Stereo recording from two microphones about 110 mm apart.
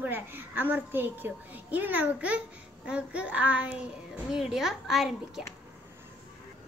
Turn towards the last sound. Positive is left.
turn(degrees=-5)  # may be behind; listen again after turning